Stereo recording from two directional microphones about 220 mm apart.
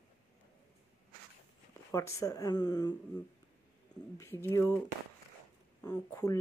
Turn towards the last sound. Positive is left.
turn(degrees=15)  # may be behind; listen again after turning